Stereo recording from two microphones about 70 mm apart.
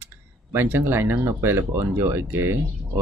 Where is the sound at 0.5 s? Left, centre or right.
Right.